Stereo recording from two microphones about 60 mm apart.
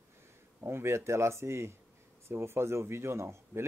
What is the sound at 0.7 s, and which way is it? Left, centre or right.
Speech, right.